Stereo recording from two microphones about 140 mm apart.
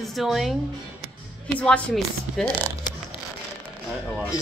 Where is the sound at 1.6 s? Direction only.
10° left (ahead or behind).